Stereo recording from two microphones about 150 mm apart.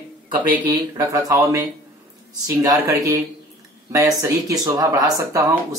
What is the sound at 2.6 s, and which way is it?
Speech, 20° right (ahead or behind).